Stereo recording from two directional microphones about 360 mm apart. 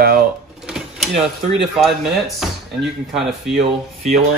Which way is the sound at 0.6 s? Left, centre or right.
Centre.